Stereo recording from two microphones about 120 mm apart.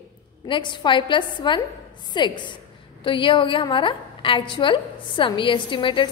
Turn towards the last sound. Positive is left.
turn(degrees=45)  # may be behind; listen again after turning